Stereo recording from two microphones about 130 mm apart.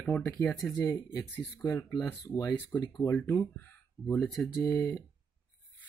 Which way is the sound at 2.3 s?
25° left (ahead or behind).